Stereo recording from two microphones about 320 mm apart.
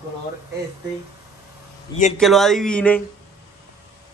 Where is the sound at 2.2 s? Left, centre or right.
Centre.